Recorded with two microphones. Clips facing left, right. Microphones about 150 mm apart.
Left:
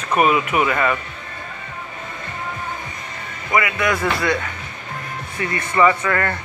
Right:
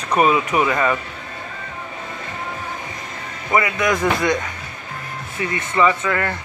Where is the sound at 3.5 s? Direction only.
30° right (ahead or behind).